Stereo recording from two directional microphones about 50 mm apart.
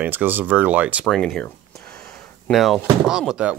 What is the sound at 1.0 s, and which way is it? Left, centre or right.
Speech, centre.